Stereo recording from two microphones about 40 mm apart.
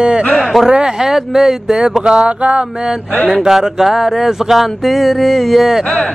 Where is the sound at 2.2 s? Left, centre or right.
Right.